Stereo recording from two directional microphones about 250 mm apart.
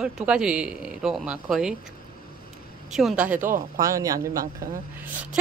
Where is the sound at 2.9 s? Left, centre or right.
Centre.